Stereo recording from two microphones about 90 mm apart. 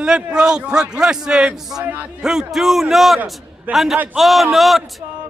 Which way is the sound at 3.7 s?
20° right (ahead or behind).